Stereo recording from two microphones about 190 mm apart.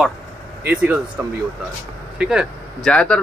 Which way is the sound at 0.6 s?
5° right (ahead or behind).